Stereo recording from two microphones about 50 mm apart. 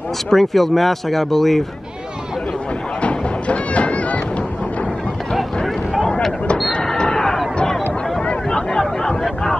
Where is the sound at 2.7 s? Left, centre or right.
Left.